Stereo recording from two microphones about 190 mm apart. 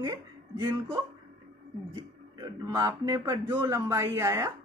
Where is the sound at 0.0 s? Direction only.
20° right (ahead or behind).